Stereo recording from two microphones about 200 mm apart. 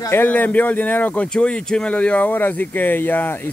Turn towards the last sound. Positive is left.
turn(degrees=10)  # may be behind; listen again after turning